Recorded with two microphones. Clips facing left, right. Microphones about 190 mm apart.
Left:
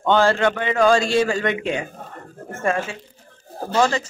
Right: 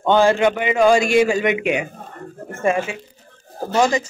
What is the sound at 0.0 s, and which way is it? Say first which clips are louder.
A man's voice: right 2 dB; 15° right (ahead or behind).